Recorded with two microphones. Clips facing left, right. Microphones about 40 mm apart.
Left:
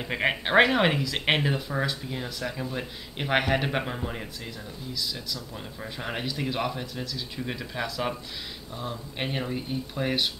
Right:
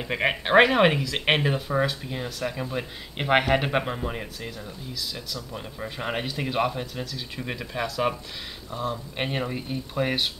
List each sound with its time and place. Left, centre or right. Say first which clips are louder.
0.0 s speech: right 1 dB; centre